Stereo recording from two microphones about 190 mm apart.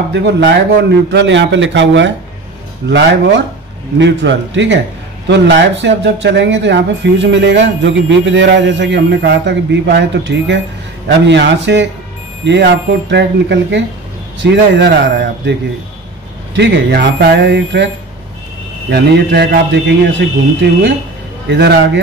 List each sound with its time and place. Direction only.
0.1 s a man's voice: 65° right (ahead or behind)
4.0 s a man's voice: 70° right (ahead or behind)
16.5 s a man's voice: 60° right (ahead or behind)
18.9 s a man's voice: 60° right (ahead or behind)
21.5 s a man's voice: 60° right (ahead or behind)